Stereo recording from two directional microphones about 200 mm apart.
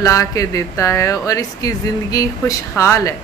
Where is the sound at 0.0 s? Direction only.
15° left (ahead or behind).